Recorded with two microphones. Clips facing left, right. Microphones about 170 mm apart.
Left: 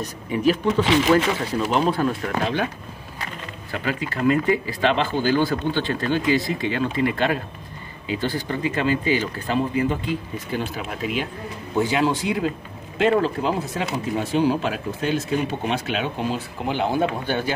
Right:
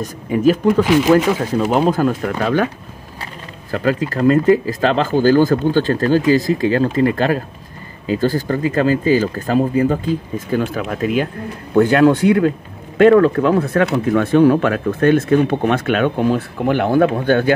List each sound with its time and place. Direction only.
0.3 s speech: 45° right (ahead or behind)
0.7 s speech: 5° right (ahead or behind)
1.4 s speech: 50° right (ahead or behind)
3.7 s speech: 40° right (ahead or behind); by 17.6 s 55° right (ahead or behind)